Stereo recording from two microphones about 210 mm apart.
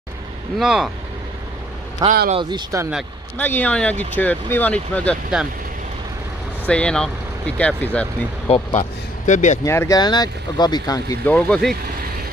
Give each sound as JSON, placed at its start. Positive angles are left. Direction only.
{"t": 0.6, "sound": "speech", "side_deg": 0}
{"t": 2.0, "sound": "speech", "side_deg": -20}
{"t": 2.9, "sound": "speech", "side_deg": 0}
{"t": 5.3, "sound": "speech", "side_deg": -5}
{"t": 6.7, "sound": "speech", "side_deg": 5}
{"t": 8.5, "sound": "speech", "side_deg": 30}
{"t": 9.7, "sound": "speech", "side_deg": 15}